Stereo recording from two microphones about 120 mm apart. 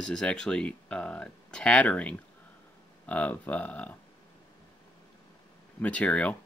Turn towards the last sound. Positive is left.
turn(degrees=10)  # may be behind; listen again after turning